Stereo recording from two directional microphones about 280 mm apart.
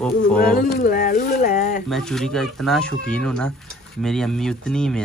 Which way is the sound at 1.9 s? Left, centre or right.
Centre.